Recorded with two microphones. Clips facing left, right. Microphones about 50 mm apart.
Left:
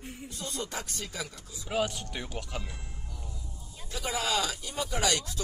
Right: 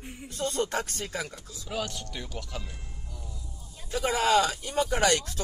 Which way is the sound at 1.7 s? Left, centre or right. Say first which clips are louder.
Left 3 dB; left.